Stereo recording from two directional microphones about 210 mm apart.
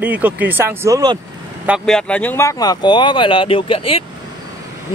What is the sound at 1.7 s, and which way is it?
Speech, 5° left (ahead or behind).